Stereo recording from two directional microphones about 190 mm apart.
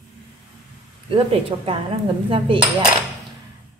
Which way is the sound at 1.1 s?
30° right (ahead or behind).